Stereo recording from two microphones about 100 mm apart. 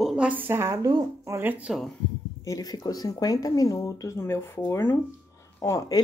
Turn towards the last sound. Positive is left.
turn(degrees=35)  # may be behind; listen again after turning